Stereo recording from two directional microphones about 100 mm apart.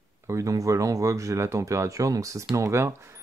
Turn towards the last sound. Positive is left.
turn(degrees=-25)  # may be behind; listen again after turning